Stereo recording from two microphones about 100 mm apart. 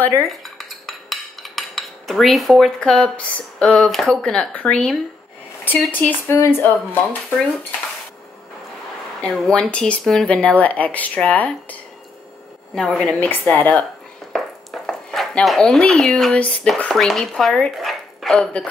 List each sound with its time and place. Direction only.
0.3 s dishes: centre (ahead or behind)
3.5 s speech: 10° left (ahead or behind)
9.2 s speech: 5° left (ahead or behind)
12.7 s speech: centre (ahead or behind)
13.2 s speech: 20° left (ahead or behind)
14.3 s a sound: centre (ahead or behind)
15.0 s dishes: 10° left (ahead or behind)
15.4 s speech: centre (ahead or behind)